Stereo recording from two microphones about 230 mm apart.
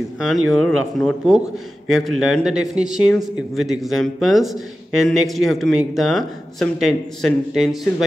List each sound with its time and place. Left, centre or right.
0.2 s speech: centre